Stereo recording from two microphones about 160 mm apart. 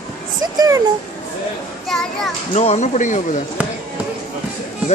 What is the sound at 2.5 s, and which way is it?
Speech, 40° left (ahead or behind).